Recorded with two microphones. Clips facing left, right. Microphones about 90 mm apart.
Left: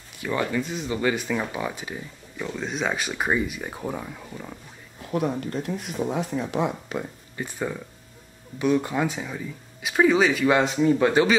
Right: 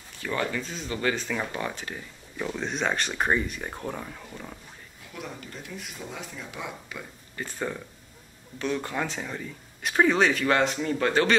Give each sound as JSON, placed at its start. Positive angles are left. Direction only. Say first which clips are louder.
{"t": 0.2, "sound": "speech", "louder": "left 4 dB", "side_deg": 15}
{"t": 2.3, "sound": "speech", "louder": "left 1 dB", "side_deg": 0}
{"t": 5.1, "sound": "speech", "louder": "left 14 dB", "side_deg": 50}
{"t": 6.4, "sound": "speech", "louder": "left 11 dB", "side_deg": 60}
{"t": 7.3, "sound": "speech", "louder": "left 2 dB", "side_deg": 15}